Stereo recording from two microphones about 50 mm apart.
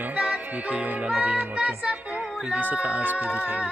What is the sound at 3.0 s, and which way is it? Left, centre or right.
A capella, right.